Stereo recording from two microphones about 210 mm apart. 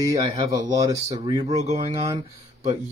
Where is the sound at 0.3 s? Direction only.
20° right (ahead or behind).